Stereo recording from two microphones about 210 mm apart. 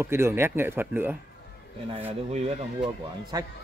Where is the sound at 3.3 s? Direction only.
15° right (ahead or behind).